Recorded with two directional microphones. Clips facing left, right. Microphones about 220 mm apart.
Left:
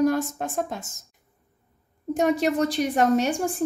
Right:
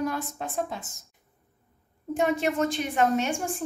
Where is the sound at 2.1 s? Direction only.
40° left (ahead or behind).